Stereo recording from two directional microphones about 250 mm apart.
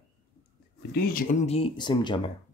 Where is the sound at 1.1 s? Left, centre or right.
Left.